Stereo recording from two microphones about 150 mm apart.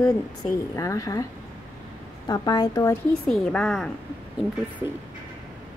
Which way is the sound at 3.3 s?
5° left (ahead or behind).